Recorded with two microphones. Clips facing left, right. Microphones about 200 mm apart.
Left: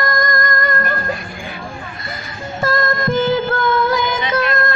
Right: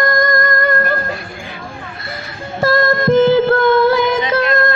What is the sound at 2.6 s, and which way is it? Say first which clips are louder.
Music: right 5 dB; 60° right (ahead or behind).